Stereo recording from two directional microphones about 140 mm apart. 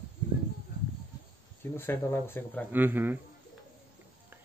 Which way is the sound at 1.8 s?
15° left (ahead or behind).